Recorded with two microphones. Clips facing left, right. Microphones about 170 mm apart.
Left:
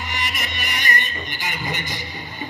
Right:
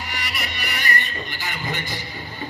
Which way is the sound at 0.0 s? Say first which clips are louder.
Left 2 dB; 20° left (ahead or behind).